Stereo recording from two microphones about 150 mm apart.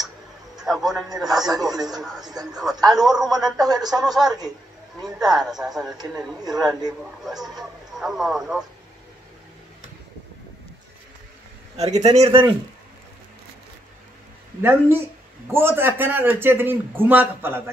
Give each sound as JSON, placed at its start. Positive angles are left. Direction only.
{"t": 0.6, "sound": "a man's voice", "side_deg": 0}
{"t": 1.3, "sound": "speech", "side_deg": -25}
{"t": 1.9, "sound": "speech", "side_deg": 0}
{"t": 3.5, "sound": "speech", "side_deg": -25}
{"t": 4.0, "sound": "speech", "side_deg": 0}
{"t": 11.7, "sound": "speech", "side_deg": -50}
{"t": 14.6, "sound": "a man's voice", "side_deg": -15}